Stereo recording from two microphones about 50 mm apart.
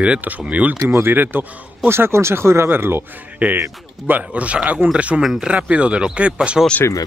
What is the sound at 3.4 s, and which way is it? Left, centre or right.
Speech, right.